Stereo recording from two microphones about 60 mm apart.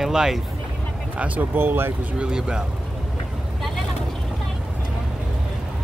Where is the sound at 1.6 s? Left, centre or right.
Right.